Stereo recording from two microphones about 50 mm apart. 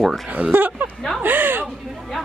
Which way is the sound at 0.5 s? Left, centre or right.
Right.